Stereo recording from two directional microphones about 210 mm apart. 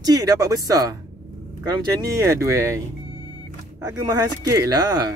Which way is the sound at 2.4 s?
15° right (ahead or behind).